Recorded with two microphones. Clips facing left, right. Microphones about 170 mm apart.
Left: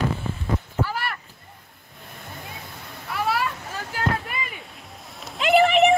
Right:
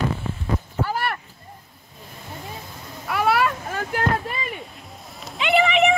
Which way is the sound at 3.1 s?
65° right (ahead or behind).